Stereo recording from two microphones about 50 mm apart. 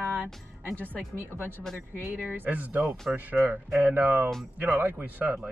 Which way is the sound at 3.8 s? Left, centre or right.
Right.